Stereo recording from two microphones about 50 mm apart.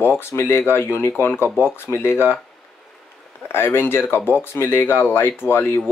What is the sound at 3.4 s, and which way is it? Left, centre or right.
Speech, left.